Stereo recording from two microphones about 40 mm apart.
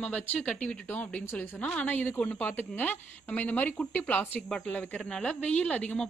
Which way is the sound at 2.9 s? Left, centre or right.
Left.